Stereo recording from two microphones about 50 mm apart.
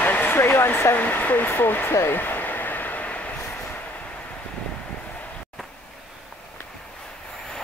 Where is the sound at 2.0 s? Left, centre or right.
Left.